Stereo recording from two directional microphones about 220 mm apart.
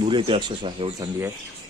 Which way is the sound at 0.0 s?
20° right (ahead or behind).